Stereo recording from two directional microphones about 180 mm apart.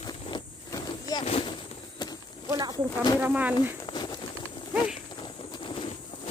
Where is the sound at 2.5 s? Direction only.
20° right (ahead or behind).